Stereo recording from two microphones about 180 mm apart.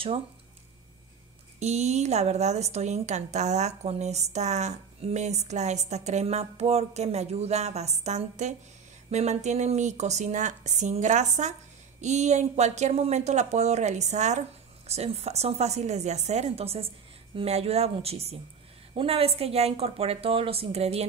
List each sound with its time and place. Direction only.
1.6 s a woman's voice: 40° right (ahead or behind)